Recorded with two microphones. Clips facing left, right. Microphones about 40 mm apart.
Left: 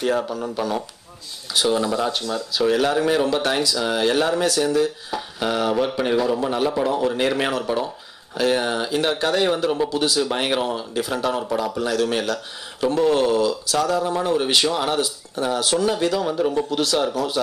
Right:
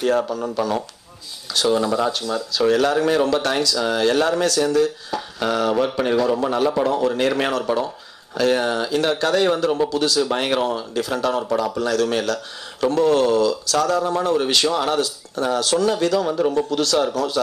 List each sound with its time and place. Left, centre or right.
0.3 s speech: centre
9.8 s speech: centre